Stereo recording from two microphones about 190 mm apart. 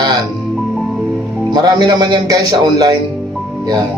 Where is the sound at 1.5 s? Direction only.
20° right (ahead or behind).